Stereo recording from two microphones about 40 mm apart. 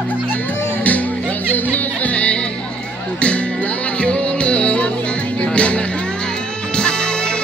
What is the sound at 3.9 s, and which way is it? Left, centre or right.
Music, left.